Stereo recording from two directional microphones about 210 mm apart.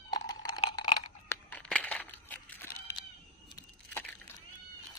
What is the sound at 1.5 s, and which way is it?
Cat, 5° left (ahead or behind).